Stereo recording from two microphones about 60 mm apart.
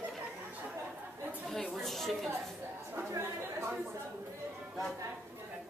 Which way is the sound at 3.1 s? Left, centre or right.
Right.